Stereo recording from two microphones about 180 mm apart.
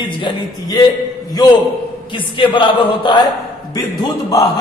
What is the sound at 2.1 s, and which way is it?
A man's voice, 25° left (ahead or behind).